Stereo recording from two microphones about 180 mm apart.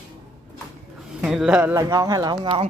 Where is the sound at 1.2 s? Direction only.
5° right (ahead or behind).